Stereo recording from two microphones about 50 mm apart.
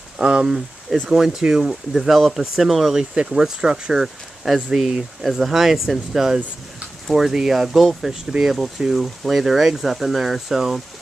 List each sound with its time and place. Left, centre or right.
0.2 s speech: centre
3.0 s speech: centre